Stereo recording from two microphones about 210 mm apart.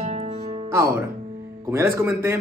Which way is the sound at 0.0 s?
30° right (ahead or behind).